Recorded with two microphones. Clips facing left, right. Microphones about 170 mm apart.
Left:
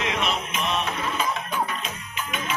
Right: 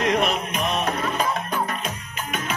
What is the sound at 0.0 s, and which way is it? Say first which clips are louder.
Music: right 5 dB; 45° right (ahead or behind).